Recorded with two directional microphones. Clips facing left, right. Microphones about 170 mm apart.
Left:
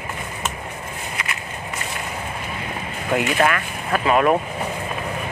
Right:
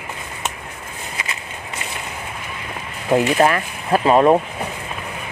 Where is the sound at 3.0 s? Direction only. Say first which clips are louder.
Right 4 dB; 30° right (ahead or behind).